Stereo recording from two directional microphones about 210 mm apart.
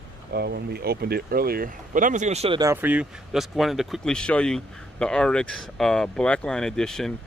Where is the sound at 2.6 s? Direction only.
10° right (ahead or behind).